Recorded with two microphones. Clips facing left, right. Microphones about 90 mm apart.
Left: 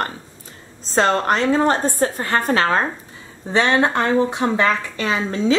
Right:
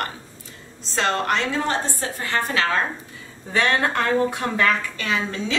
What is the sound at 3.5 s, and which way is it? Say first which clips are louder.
Speech: left 4 dB; 20° left (ahead or behind).